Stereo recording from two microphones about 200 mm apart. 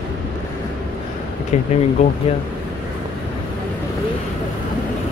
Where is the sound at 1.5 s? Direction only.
35° left (ahead or behind).